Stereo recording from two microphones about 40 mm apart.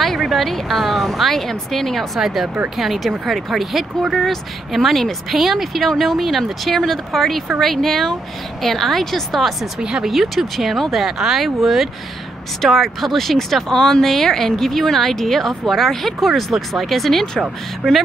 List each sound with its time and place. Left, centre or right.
0.0 s speech: centre
2.1 s speech: centre
9.8 s speech: right
10.0 s speech: centre